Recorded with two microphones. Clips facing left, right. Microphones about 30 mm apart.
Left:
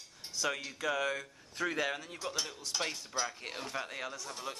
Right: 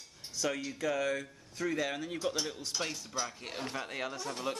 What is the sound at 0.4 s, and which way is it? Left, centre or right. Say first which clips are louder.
Speech: right 1 dB; centre.